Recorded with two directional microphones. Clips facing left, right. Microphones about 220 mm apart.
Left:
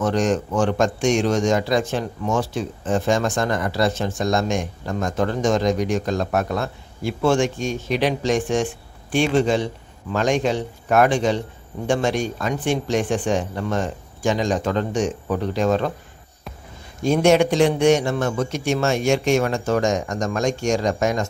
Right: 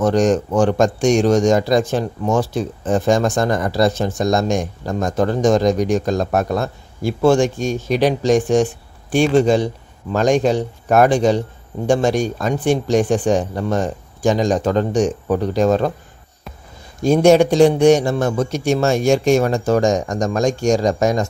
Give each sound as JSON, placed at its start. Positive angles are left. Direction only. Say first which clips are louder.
{"t": 0.0, "sound": "a man's voice", "louder": "right 5 dB", "side_deg": -40}
{"t": 17.0, "sound": "a man's voice", "louder": "right 4 dB", "side_deg": -40}